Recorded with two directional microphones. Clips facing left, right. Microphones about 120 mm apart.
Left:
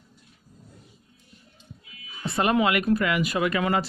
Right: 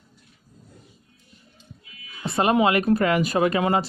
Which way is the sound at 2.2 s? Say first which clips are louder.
Right 3 dB; 25° right (ahead or behind).